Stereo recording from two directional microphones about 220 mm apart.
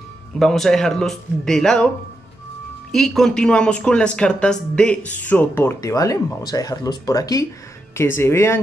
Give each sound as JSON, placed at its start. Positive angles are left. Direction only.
{"t": 0.4, "sound": "speech", "side_deg": 0}
{"t": 2.9, "sound": "speech", "side_deg": 0}